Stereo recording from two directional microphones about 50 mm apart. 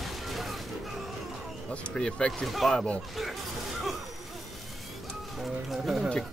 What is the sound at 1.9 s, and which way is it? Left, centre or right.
Speech, centre.